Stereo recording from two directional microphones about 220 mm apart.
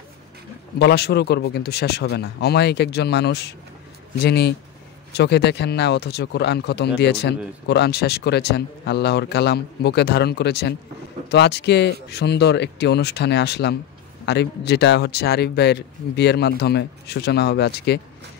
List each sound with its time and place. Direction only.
0.7 s speech: 50° left (ahead or behind)